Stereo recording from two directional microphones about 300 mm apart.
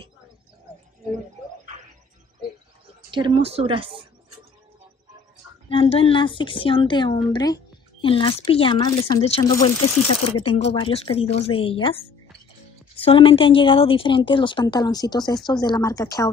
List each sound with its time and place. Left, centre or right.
3.1 s speech: centre
5.7 s a woman's voice: centre